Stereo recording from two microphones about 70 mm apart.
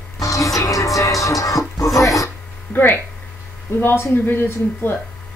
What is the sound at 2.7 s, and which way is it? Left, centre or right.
A woman's voice, left.